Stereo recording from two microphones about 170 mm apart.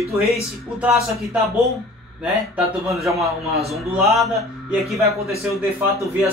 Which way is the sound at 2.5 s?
Centre (ahead or behind).